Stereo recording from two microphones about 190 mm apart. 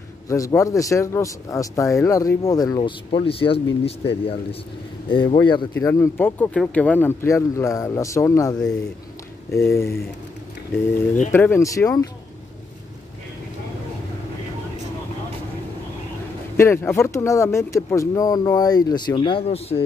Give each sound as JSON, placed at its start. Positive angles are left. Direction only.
{"t": 0.3, "sound": "a man's voice", "side_deg": 15}
{"t": 5.9, "sound": "speech", "side_deg": 10}
{"t": 11.3, "sound": "speech", "side_deg": 10}
{"t": 16.5, "sound": "speech", "side_deg": 15}